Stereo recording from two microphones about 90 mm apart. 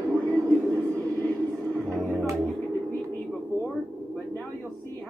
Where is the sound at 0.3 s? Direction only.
20° left (ahead or behind).